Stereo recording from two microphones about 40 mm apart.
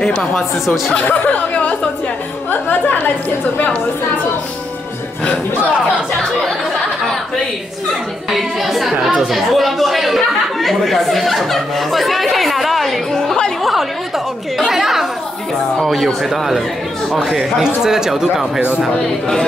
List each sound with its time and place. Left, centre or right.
0.2 s a woman's voice: centre
1.0 s speech: left
8.3 s a woman's voice: centre
13.6 s chatter: centre
16.1 s a woman's voice: centre